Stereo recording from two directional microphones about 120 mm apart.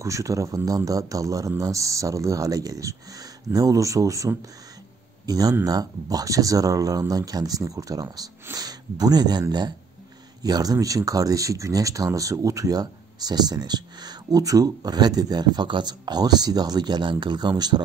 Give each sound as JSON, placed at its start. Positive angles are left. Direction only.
{"t": 0.0, "sound": "speech", "side_deg": -25}